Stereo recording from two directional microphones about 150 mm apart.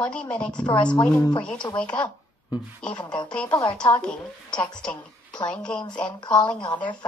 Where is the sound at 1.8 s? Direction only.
10° left (ahead or behind).